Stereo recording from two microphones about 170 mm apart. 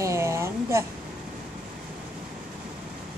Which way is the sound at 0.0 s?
15° right (ahead or behind).